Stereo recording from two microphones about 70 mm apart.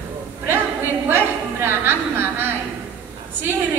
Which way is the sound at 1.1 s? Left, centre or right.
Right.